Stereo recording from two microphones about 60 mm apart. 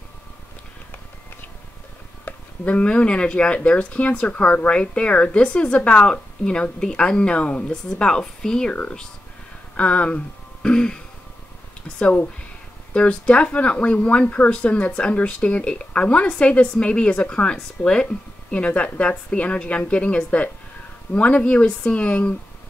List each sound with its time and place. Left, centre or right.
2.2 s speech: left
12.0 s speech: left